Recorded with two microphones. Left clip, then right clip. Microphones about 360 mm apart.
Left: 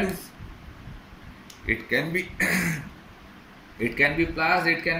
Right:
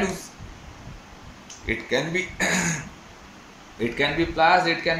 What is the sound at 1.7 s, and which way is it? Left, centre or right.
Speech, right.